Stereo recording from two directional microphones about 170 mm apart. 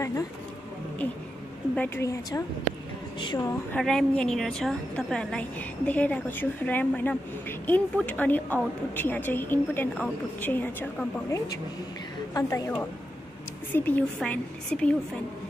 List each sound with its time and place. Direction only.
1.8 s a woman's voice: 15° left (ahead or behind)
3.7 s a woman's voice: 5° left (ahead or behind)